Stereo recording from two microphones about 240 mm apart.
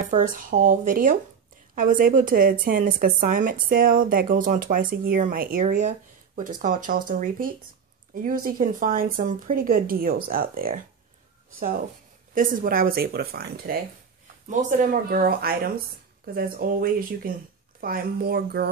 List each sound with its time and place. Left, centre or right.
0.0 s speech: right
12.4 s speech: right